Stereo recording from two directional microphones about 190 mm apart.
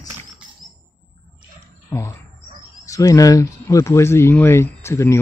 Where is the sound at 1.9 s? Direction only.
15° left (ahead or behind).